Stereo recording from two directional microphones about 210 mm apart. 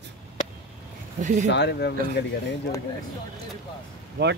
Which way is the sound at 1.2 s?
35° right (ahead or behind).